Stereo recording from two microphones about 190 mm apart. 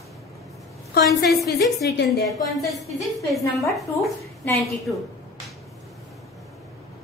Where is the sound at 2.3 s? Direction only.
Centre (ahead or behind).